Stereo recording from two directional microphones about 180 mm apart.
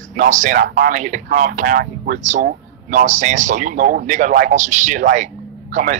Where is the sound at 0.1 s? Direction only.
45° right (ahead or behind).